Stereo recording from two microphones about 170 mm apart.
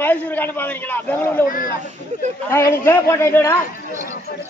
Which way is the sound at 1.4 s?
55° left (ahead or behind).